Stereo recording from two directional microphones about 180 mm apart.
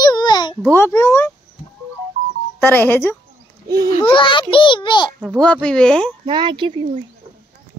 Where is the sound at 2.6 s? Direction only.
10° left (ahead or behind).